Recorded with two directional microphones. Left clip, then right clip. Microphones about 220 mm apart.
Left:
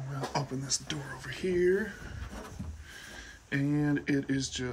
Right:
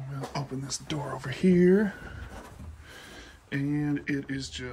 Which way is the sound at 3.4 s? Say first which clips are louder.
Even; 5° left (ahead or behind).